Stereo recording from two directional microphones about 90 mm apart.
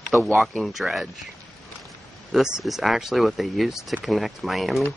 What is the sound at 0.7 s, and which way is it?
Speech, centre (ahead or behind).